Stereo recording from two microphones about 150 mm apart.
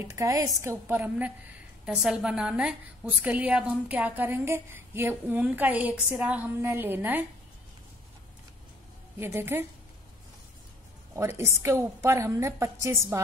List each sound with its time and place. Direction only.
0.0 s a woman's voice: 20° right (ahead or behind)
9.2 s a woman's voice: 15° right (ahead or behind)
11.1 s a woman's voice: 15° right (ahead or behind)